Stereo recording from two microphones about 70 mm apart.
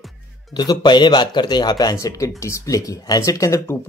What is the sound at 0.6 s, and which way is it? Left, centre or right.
Speech, left.